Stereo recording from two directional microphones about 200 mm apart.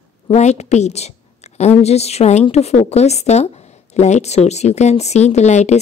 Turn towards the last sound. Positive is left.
turn(degrees=35)  # may be behind; listen again after turning